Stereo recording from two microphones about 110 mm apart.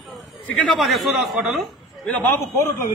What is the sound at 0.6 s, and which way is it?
A man's voice, centre (ahead or behind).